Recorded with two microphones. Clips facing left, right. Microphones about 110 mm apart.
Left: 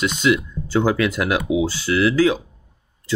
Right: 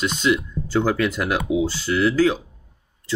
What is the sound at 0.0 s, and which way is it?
Speech, 90° left.